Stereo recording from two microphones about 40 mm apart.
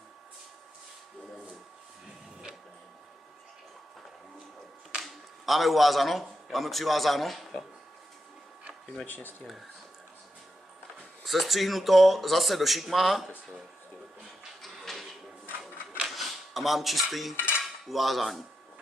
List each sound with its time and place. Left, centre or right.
5.0 s a man's voice: centre
9.0 s speech: left
11.2 s speech: centre
14.6 s a sound: centre
16.1 s dishes: centre
17.8 s speech: centre